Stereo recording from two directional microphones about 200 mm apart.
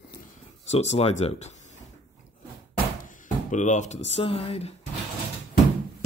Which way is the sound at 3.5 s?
35° left (ahead or behind).